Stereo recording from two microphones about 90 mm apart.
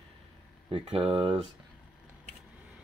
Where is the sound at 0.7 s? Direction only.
85° right.